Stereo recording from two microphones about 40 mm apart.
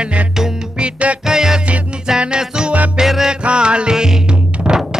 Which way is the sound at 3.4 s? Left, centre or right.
Right.